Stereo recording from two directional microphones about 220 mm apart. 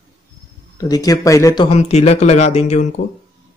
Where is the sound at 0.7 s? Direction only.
15° left (ahead or behind); by 3.0 s 30° left (ahead or behind).